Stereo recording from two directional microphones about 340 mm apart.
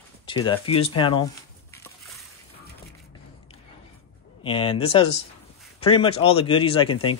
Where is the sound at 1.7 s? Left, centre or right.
Centre.